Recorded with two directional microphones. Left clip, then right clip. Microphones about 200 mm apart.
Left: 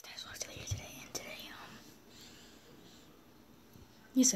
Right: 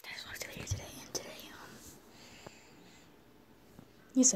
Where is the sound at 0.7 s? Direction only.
15° right (ahead or behind).